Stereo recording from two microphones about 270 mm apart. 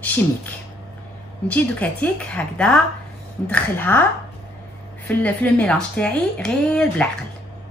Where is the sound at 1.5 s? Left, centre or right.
Centre.